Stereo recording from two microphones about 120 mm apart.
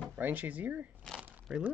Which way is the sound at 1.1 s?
15° right (ahead or behind).